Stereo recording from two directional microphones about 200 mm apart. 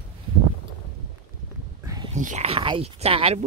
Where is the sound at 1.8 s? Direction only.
20° right (ahead or behind).